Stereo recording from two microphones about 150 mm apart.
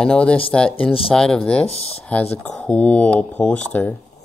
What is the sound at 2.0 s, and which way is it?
Speech, 10° left (ahead or behind).